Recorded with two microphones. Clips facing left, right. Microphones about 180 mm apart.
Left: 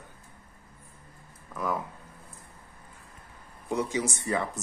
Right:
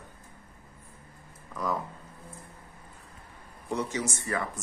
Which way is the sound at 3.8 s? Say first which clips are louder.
Left 3 dB; 15° left (ahead or behind).